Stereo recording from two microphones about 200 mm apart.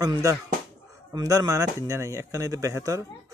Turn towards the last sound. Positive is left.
turn(degrees=-15)  # may be behind; listen again after turning